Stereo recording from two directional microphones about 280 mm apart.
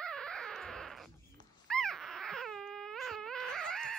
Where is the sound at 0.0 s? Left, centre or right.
Centre.